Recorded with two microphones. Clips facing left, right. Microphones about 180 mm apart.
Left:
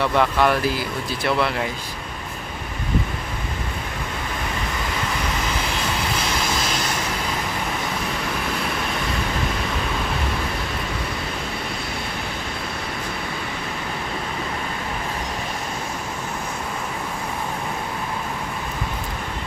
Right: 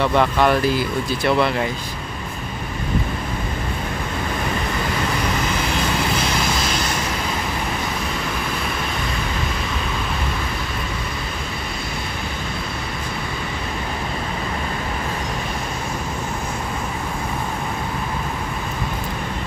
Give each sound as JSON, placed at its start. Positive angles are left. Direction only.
{"t": 0.2, "sound": "speech", "side_deg": 5}